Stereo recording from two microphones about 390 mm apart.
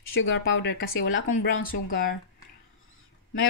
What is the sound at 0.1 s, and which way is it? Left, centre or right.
Speech, left.